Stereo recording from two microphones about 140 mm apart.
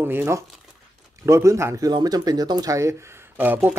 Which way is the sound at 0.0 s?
15° right (ahead or behind).